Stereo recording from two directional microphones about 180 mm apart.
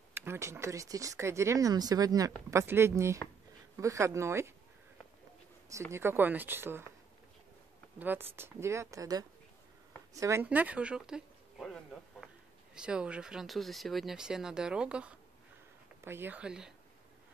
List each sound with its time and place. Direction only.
0.1 s speech: 15° right (ahead or behind)
5.9 s speech: 15° right (ahead or behind)
8.0 s speech: 10° right (ahead or behind)